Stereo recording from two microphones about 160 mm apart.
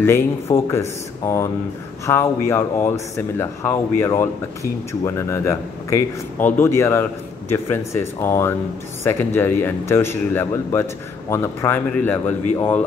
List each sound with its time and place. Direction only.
0.0 s speech: 15° left (ahead or behind)